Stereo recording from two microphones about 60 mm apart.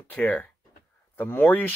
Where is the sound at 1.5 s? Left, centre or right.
Left.